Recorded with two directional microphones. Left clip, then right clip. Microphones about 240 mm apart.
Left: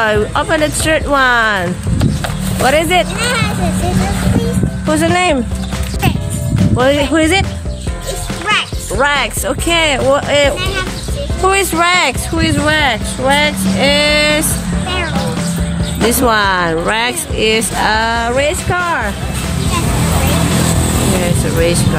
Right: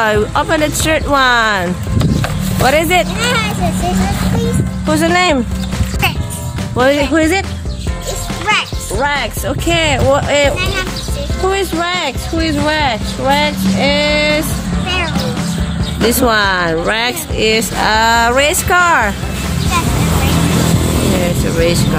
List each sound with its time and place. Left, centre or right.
0.0 s speech: centre
4.8 s speech: centre
6.6 s speech: centre
9.0 s speech: centre
11.4 s speech: left
12.6 s speech: centre
14.9 s music: centre
16.0 s speech: centre
21.2 s music: centre